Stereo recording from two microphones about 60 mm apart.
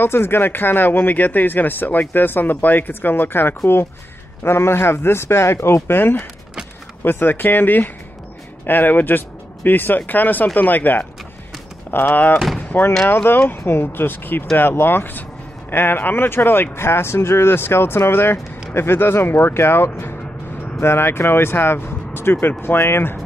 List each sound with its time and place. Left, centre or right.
0.0 s a man's voice: left
5.9 s speech: left
12.5 s slam: left
13.1 s speech: left